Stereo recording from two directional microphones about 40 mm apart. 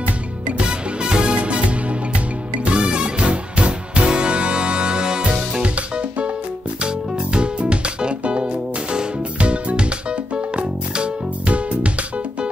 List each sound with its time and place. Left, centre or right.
0.0 s music: right